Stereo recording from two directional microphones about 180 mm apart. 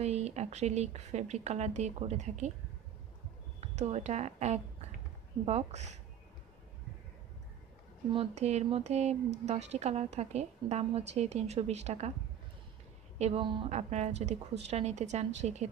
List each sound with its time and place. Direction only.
0.0 s a woman's voice: 35° right (ahead or behind)
3.6 s a woman's voice: 35° right (ahead or behind)
8.1 s a woman's voice: 35° right (ahead or behind)
13.2 s a woman's voice: 30° right (ahead or behind)